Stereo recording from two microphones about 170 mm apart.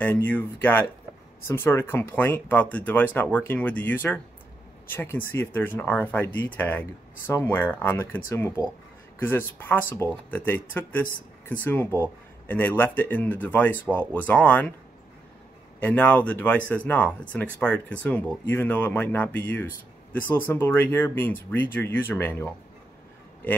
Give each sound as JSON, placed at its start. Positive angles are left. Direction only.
{"t": 0.0, "sound": "speech", "side_deg": 10}
{"t": 9.7, "sound": "speech", "side_deg": 10}
{"t": 15.8, "sound": "speech", "side_deg": 10}